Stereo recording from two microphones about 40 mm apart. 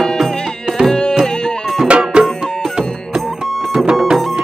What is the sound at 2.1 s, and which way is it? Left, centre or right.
Music, right.